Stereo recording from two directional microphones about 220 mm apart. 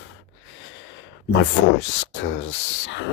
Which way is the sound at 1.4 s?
55° left (ahead or behind).